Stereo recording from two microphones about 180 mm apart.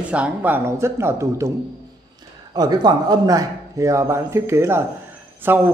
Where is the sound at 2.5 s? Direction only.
20° right (ahead or behind).